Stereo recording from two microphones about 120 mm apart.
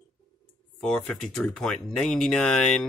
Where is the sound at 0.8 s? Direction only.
5° left (ahead or behind).